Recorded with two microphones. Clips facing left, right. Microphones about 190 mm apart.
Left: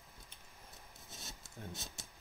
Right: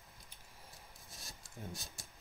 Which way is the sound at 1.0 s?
25° left (ahead or behind).